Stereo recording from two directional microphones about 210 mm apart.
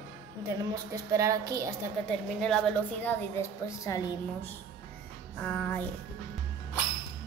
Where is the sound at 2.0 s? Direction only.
Centre (ahead or behind).